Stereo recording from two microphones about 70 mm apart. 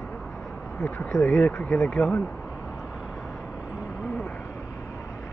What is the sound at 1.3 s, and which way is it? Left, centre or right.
Speech, left.